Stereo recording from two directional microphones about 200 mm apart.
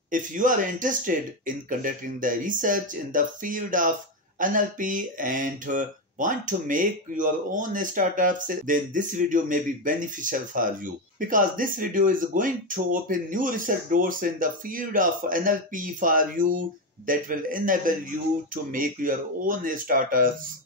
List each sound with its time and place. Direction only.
0.1 s speech: 40° right (ahead or behind)